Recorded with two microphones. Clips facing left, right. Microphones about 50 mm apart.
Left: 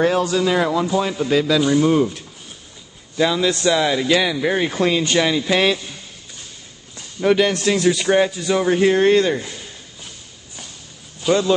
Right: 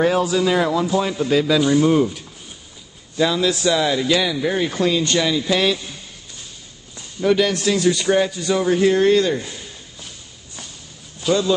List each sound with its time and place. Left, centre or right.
0.0 s a man's voice: centre; by 5.8 s left
7.2 s speech: left
7.7 s speech: centre; by 9.4 s left
11.2 s speech: left